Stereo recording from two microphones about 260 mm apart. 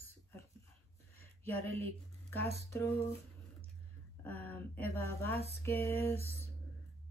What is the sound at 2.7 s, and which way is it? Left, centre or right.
Speech, centre.